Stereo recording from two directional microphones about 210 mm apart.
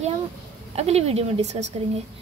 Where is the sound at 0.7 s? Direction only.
30° right (ahead or behind).